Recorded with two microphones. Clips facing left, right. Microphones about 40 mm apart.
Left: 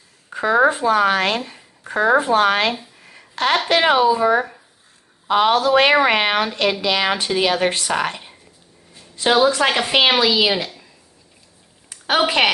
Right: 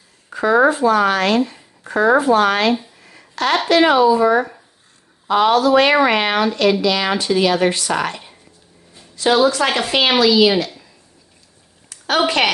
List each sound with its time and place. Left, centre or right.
0.3 s a sound: left
0.7 s a woman's voice: left
1.4 s speech: centre
2.1 s a woman's voice: left; by 10.9 s centre
11.9 s a woman's voice: centre